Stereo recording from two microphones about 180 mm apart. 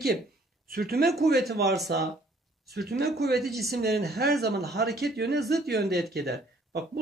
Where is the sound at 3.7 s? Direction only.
60° right (ahead or behind).